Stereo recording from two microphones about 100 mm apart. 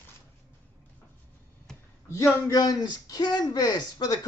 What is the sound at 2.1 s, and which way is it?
Speech, 35° left (ahead or behind).